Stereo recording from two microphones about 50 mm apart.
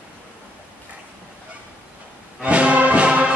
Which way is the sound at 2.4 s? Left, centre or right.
Right.